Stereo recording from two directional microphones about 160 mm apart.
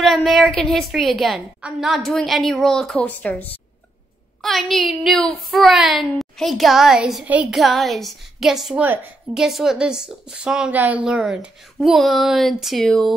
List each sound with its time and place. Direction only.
0.0 s speech: centre (ahead or behind)